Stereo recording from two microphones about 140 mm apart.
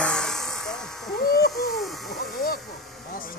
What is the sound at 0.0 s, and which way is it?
Electric shaver, 5° left (ahead or behind).